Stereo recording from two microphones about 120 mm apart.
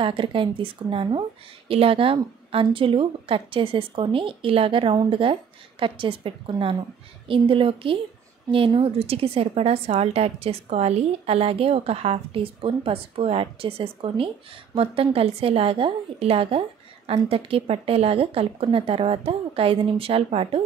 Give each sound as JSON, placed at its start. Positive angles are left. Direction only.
{"t": 0.0, "sound": "a woman's voice", "side_deg": -45}